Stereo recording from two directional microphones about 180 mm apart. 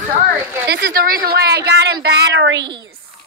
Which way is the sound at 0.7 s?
65° right (ahead or behind).